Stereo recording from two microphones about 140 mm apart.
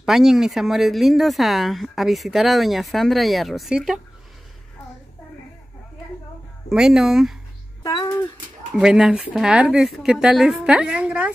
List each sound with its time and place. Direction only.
0.0 s speech: 5° right (ahead or behind)
6.7 s speech: 5° right (ahead or behind)
7.8 s speech: 25° left (ahead or behind)
8.7 s speech: 5° right (ahead or behind)